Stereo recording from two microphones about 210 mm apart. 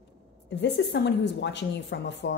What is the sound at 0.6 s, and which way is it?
A woman's voice, 55° left (ahead or behind).